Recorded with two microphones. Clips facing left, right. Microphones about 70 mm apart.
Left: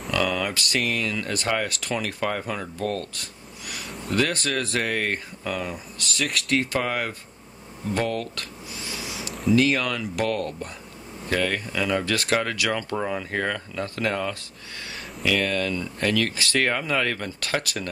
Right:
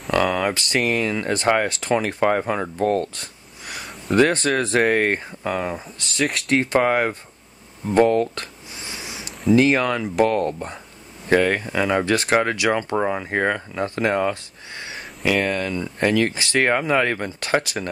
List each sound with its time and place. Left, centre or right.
0.1 s speech: right
7.9 s a sound: right
9.5 s speech: right